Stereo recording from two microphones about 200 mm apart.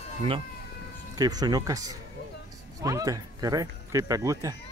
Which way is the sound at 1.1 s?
20° right (ahead or behind).